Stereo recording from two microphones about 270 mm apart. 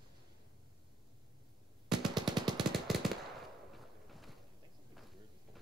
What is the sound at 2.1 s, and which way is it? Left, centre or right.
Machine gun, centre.